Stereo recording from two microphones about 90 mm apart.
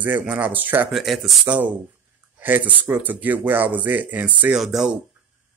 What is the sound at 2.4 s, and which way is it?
Speech, 20° right (ahead or behind).